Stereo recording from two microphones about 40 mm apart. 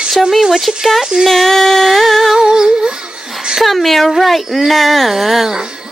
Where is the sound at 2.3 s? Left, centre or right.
Centre.